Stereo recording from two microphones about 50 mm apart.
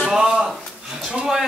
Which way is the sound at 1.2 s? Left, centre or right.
Centre.